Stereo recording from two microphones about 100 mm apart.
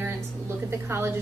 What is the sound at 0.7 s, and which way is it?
Speech, 25° right (ahead or behind).